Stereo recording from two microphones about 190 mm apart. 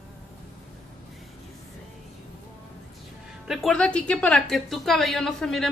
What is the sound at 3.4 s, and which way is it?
A woman's voice, 5° left (ahead or behind).